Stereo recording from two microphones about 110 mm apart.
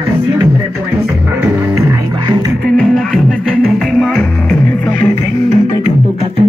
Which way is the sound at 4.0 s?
10° left (ahead or behind).